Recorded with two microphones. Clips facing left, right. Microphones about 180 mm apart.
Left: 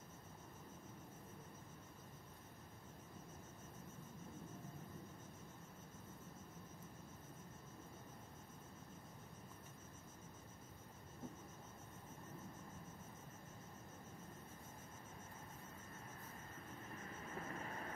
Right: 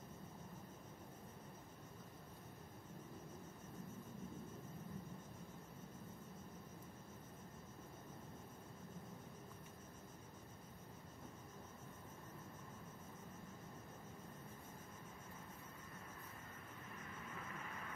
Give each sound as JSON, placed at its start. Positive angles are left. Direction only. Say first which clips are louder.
{"t": 17.4, "sound": "vehicle", "louder": "left 6 dB", "side_deg": 40}